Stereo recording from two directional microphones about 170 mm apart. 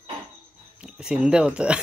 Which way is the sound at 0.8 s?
5° right (ahead or behind).